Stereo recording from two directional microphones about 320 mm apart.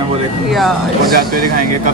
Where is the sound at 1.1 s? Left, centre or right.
Right.